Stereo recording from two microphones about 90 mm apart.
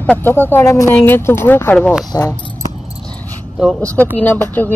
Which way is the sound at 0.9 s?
20° left (ahead or behind).